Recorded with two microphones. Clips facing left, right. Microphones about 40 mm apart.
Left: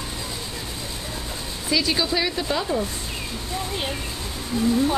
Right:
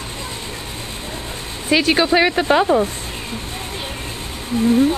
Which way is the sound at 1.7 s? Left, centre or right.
Right.